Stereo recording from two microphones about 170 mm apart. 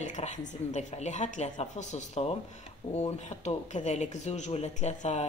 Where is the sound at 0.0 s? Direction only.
45° left (ahead or behind).